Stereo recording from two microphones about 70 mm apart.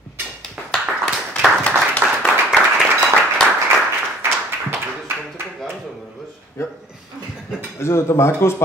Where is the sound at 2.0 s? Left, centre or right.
Centre.